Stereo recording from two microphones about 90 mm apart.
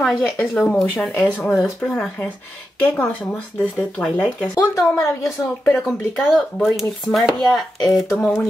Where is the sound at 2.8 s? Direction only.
15° left (ahead or behind).